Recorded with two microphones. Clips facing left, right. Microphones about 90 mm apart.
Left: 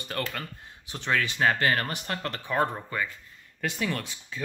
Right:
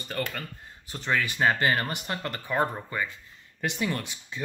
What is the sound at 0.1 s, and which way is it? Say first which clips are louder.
Speech: right 1 dB; 5° right (ahead or behind).